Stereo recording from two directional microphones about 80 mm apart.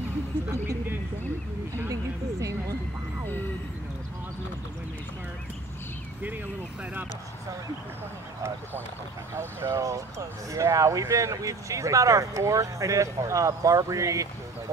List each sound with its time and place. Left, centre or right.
9.3 s speech: right